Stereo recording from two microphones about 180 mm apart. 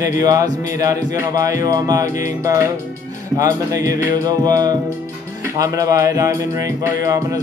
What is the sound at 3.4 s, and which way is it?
Speech, 20° right (ahead or behind).